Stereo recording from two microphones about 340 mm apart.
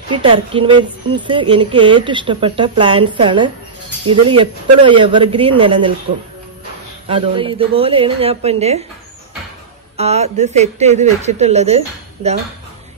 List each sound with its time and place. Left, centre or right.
0.1 s a woman's voice: centre
7.1 s a woman's voice: centre
9.9 s speech: centre